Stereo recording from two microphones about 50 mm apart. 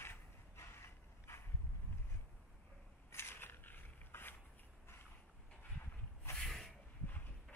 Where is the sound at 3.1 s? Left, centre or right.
Left.